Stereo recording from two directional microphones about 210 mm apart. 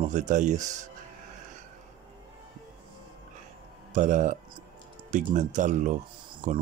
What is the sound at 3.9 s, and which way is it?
Speech, 35° right (ahead or behind).